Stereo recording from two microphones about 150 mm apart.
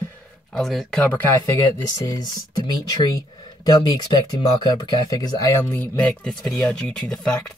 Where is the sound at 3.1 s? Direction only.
25° left (ahead or behind).